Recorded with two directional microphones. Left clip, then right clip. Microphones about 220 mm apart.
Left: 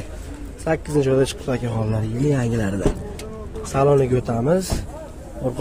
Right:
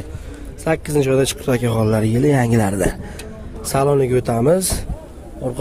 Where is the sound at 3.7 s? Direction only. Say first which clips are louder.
Right 1 dB; 40° right (ahead or behind).